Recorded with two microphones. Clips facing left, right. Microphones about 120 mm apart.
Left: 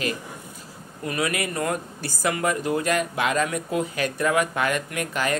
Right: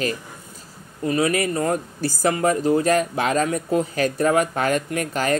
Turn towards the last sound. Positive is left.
turn(degrees=-35)  # may be behind; listen again after turning